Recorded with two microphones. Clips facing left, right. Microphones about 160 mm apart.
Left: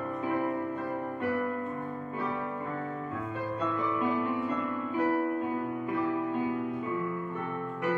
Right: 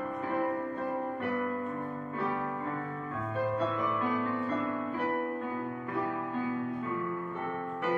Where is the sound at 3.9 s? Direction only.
15° left (ahead or behind).